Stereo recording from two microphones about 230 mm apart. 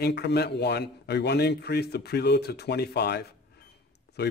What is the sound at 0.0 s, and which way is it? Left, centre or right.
A man's voice, left.